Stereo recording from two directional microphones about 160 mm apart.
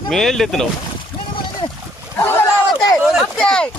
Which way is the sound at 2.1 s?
15° left (ahead or behind).